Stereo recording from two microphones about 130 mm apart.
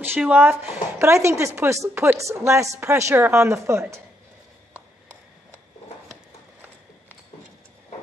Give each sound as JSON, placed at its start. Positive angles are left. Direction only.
{"t": 0.0, "sound": "a woman's voice", "side_deg": -15}